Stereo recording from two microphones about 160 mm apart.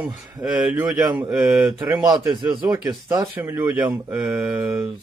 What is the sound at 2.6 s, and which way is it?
Speech, 20° right (ahead or behind).